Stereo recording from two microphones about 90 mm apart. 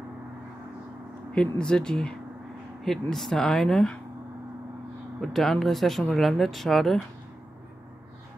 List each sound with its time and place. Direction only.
1.3 s speech: 10° left (ahead or behind)
5.2 s speech: centre (ahead or behind)